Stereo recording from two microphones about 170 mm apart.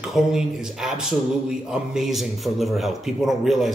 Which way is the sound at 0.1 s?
5° right (ahead or behind).